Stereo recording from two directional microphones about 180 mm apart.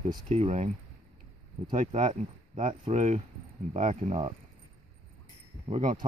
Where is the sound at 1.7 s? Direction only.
45° right (ahead or behind).